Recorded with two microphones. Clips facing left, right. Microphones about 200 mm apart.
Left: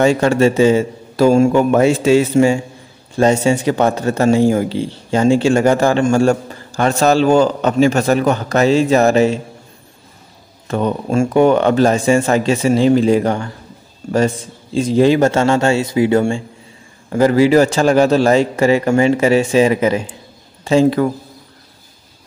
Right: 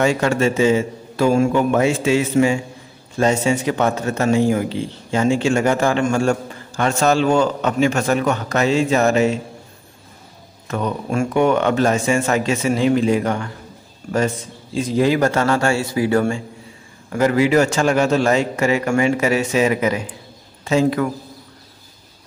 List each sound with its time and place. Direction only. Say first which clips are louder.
0.0 s a man's voice: left 5 dB; 30° left (ahead or behind)
10.7 s a man's voice: left 5 dB; 30° left (ahead or behind)